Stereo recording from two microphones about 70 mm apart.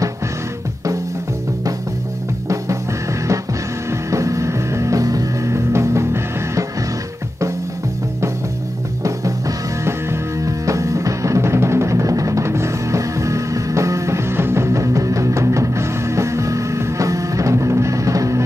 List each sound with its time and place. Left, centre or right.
4.1 s music: right
10.4 s music: right